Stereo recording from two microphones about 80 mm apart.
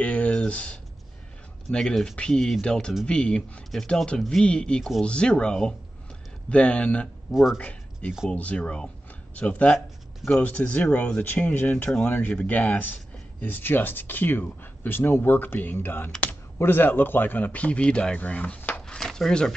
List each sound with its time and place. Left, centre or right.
0.0 s a sound: centre
1.7 s speech: centre
7.2 s speech: centre
7.5 s speech: centre